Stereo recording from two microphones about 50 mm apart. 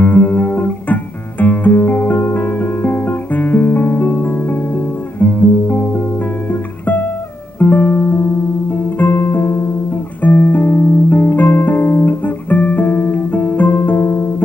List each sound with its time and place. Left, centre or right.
0.0 s music: left
10.2 s music: left